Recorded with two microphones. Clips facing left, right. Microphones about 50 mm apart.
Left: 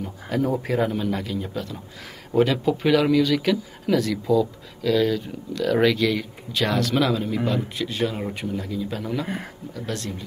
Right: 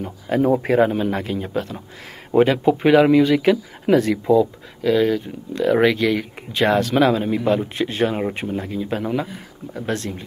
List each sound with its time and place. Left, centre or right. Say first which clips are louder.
0.0 s speech: right 5 dB; right